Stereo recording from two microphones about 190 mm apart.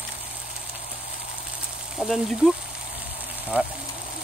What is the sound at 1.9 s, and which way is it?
Speech, centre (ahead or behind).